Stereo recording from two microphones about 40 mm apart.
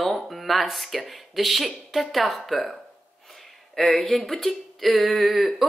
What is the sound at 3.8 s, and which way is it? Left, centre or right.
A man's voice, centre.